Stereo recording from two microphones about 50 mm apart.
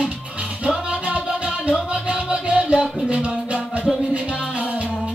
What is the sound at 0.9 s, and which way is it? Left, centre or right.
Music, right.